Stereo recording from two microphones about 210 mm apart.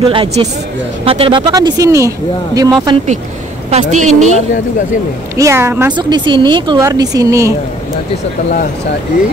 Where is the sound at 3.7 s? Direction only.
35° right (ahead or behind).